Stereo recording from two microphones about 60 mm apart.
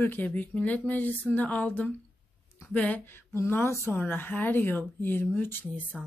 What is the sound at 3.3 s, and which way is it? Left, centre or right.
Speech, left.